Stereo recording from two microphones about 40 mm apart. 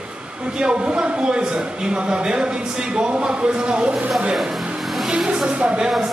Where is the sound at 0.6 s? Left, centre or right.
Right.